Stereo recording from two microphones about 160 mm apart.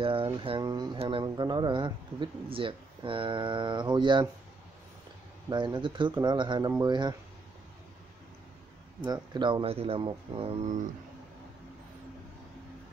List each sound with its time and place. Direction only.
0.0 s speech: 35° right (ahead or behind)
5.5 s speech: 30° right (ahead or behind)
9.0 s speech: 25° right (ahead or behind)